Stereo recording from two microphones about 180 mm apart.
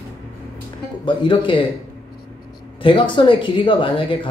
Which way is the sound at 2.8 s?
30° left (ahead or behind).